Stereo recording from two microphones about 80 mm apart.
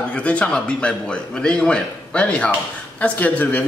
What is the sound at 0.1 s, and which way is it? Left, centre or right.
A man's voice, centre.